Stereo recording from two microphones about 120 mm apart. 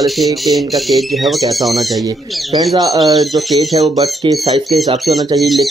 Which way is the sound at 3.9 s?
30° right (ahead or behind).